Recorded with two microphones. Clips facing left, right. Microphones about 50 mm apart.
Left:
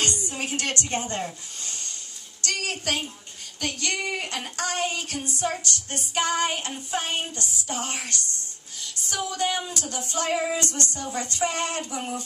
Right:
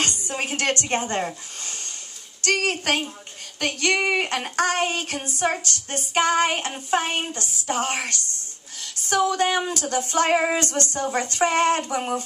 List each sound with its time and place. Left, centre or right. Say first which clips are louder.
0.3 s a woman's voice: right 5 dB; right
2.4 s child singing: right 6 dB; right
10.6 s child singing: right 5 dB; right